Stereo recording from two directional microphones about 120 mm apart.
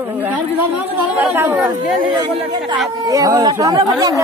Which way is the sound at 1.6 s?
35° right (ahead or behind).